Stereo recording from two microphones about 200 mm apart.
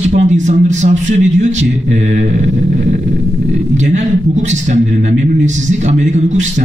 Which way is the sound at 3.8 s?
35° right (ahead or behind).